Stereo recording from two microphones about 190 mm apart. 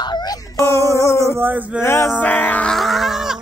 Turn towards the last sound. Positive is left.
turn(degrees=0)  # may be behind; listen again after turning